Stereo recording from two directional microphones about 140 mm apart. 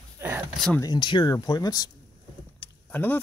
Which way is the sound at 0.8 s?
30° left (ahead or behind).